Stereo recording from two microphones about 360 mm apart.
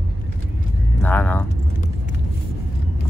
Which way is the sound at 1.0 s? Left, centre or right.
Centre.